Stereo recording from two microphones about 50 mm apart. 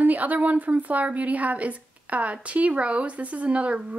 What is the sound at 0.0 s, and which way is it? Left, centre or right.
A woman's voice, right.